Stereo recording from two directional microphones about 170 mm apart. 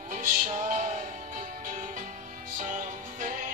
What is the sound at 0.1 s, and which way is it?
Music, 50° right (ahead or behind).